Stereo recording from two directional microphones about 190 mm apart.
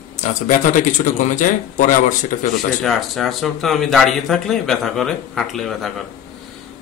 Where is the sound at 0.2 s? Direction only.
40° left (ahead or behind).